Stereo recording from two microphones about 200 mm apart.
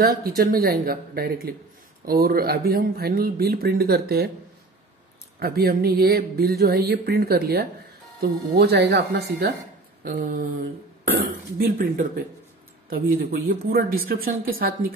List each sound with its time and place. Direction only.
0.0 s speech: 50° right (ahead or behind)
5.4 s speech: 50° right (ahead or behind)
11.5 s speech: 45° right (ahead or behind)